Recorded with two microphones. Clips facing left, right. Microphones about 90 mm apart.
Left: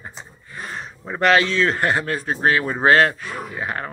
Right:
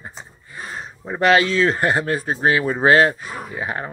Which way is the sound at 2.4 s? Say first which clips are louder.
Even; 15° right (ahead or behind).